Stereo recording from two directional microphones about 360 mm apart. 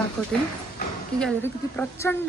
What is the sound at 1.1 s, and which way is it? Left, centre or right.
Speech, centre.